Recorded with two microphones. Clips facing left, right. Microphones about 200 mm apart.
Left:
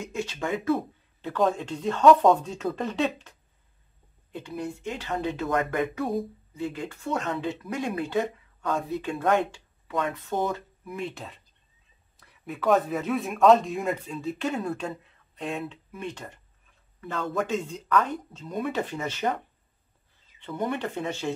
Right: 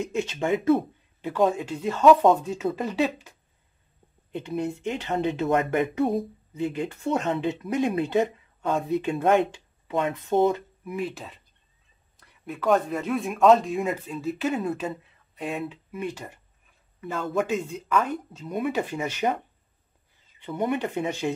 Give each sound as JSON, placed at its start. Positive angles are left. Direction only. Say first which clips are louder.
{"t": 0.0, "sound": "speech", "louder": "right 4 dB", "side_deg": -20}
{"t": 1.2, "sound": "speech", "louder": "right 2 dB", "side_deg": -10}
{"t": 4.3, "sound": "speech", "louder": "right 5 dB", "side_deg": -20}
{"t": 10.9, "sound": "speech", "louder": "right 3 dB", "side_deg": 0}
{"t": 20.3, "sound": "speech", "louder": "right 3 dB", "side_deg": -10}